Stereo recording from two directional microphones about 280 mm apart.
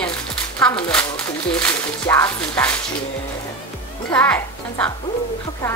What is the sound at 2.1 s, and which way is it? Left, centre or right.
Speech, centre.